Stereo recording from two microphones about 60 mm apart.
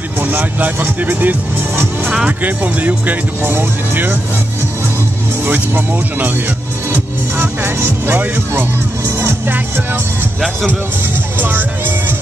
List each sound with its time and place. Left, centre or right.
0.2 s speech: right
5.4 s speech: right
11.3 s speech: right